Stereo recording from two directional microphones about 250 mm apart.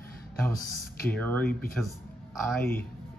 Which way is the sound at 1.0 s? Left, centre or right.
Centre.